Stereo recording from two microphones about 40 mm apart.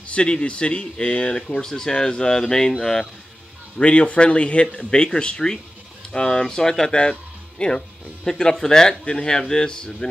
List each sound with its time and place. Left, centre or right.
0.1 s speech: left; by 3.1 s centre
3.7 s speech: left; by 7.0 s centre
7.0 s music: left
8.2 s speech: centre